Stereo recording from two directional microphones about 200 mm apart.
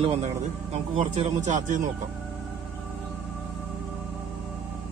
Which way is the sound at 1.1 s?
40° right (ahead or behind).